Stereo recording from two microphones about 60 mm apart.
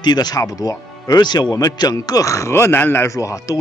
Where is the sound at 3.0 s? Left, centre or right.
Left.